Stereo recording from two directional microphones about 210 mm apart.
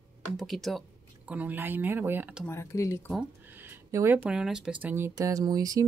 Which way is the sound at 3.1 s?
5° right (ahead or behind).